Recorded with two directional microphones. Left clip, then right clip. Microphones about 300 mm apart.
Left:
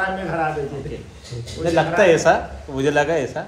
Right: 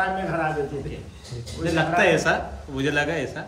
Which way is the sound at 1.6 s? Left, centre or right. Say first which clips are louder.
Left 5 dB; centre.